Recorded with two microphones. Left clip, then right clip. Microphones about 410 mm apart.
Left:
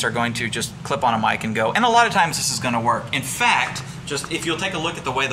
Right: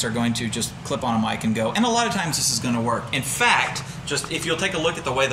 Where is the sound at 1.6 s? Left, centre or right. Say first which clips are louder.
Left 4 dB; left.